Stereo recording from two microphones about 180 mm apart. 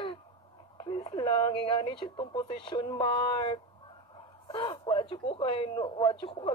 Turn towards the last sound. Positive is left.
turn(degrees=25)  # may be behind; listen again after turning